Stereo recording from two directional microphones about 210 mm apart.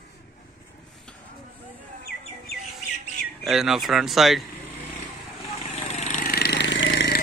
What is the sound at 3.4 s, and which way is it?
Speech, centre (ahead or behind).